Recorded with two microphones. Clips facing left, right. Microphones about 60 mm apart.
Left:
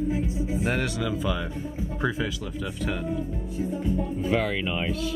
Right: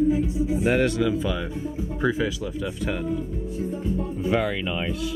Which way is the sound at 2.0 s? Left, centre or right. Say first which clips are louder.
Right 4 dB; centre.